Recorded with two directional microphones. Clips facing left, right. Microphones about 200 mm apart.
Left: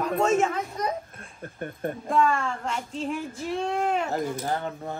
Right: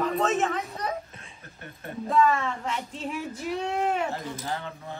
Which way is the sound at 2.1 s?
Centre (ahead or behind).